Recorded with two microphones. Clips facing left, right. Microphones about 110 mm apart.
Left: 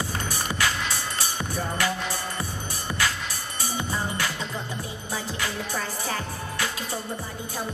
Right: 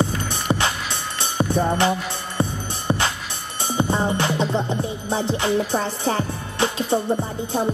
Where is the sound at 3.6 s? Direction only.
25° right (ahead or behind).